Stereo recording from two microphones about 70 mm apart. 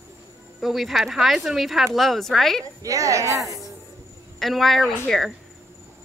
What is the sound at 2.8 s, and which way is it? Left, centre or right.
Speech, right.